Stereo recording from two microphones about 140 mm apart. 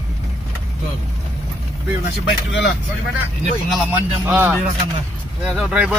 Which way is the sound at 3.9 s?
15° right (ahead or behind).